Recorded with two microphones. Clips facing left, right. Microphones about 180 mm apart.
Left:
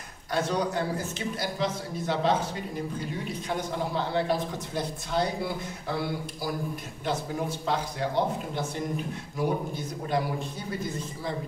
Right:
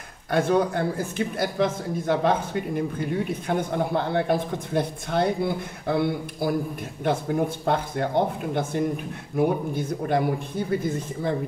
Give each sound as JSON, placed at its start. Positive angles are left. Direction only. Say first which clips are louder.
{"t": 0.3, "sound": "speech", "louder": "right 6 dB", "side_deg": -55}